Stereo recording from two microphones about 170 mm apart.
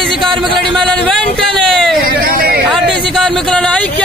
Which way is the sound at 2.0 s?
60° right (ahead or behind).